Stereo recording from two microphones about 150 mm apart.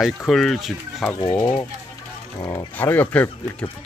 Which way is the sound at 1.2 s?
30° left (ahead or behind).